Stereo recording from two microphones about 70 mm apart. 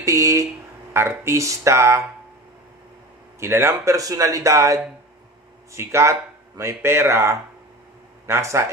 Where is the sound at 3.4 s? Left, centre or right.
Right.